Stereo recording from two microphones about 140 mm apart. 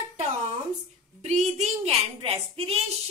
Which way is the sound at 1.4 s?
50° right (ahead or behind).